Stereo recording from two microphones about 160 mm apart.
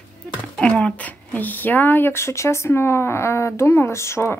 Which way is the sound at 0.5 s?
5° left (ahead or behind).